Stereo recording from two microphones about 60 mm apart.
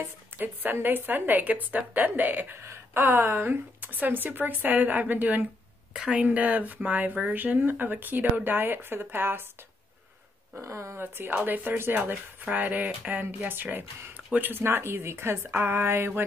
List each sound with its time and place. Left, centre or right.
0.4 s speech: right
2.5 s speech: right
5.9 s speech: centre
6.2 s speech: right
10.6 s speech: right
11.0 s speech: right
12.5 s speech: right